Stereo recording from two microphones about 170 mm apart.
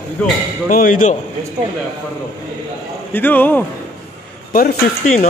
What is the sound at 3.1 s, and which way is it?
Speech, 10° left (ahead or behind).